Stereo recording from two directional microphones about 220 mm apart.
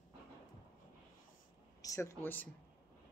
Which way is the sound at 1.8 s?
15° left (ahead or behind).